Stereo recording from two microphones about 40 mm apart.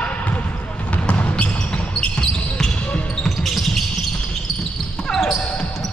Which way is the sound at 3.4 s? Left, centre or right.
Centre.